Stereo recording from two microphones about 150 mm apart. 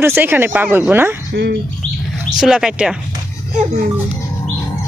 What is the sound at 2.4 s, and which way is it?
Speech, 5° right (ahead or behind).